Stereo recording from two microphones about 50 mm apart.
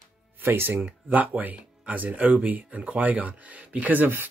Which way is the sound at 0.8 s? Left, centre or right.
Right.